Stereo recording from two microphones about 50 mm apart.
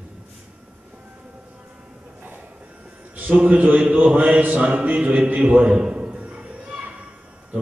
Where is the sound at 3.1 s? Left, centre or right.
Right.